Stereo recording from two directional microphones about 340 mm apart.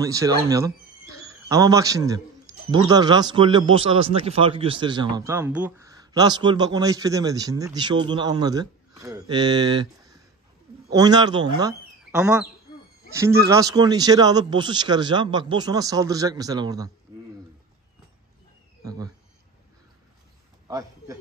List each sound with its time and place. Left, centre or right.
0.0 s speech: centre
10.9 s speech: centre
18.9 s speech: centre
20.6 s a sound: centre